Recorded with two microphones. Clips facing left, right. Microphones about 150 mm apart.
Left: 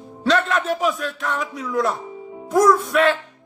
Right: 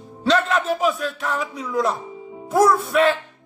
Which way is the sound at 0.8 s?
35° right (ahead or behind).